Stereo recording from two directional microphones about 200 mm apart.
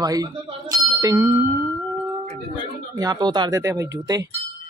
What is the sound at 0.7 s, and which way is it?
Bicycle bell, 20° right (ahead or behind).